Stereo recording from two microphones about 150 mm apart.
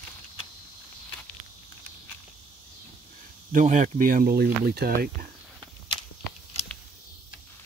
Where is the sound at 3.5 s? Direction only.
55° right (ahead or behind); by 5.1 s 90° right.